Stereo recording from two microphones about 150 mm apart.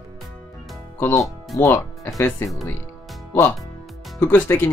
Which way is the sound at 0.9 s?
15° left (ahead or behind).